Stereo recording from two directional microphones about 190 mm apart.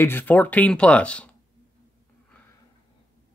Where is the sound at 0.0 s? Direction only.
10° left (ahead or behind).